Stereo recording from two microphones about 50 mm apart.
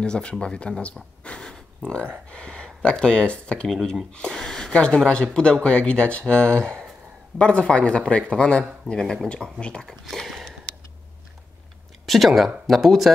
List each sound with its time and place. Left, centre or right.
0.0 s speech: centre
1.2 s a sound: centre
2.2 s speech: centre
3.6 s speech: centre
10.1 s speech: centre
12.3 s speech: centre